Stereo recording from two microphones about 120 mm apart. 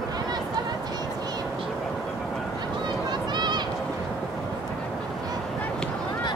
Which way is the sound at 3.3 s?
40° right (ahead or behind).